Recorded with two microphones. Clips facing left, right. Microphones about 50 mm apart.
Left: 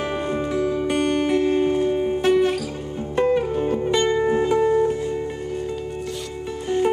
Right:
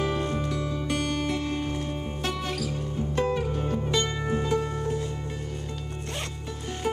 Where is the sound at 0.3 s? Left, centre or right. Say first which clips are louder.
Left 7 dB; centre.